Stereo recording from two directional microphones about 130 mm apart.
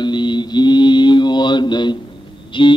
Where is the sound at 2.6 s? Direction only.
40° left (ahead or behind).